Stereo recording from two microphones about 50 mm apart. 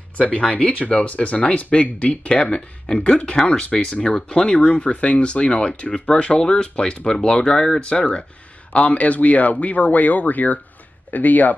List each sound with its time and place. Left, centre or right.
0.2 s speech: left